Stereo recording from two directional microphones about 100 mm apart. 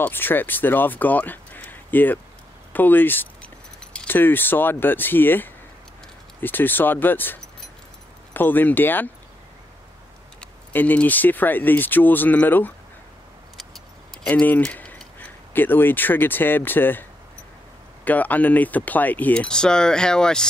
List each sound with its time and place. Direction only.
0.0 s speech: 20° left (ahead or behind)
10.7 s speech: 20° left (ahead or behind)
13.7 s keys jangling: 10° left (ahead or behind)
14.6 s speech: 15° left (ahead or behind)
18.0 s speech: 15° left (ahead or behind)